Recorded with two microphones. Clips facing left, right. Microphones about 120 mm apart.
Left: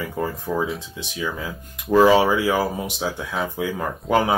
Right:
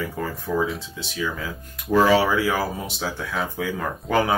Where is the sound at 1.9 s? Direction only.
20° left (ahead or behind).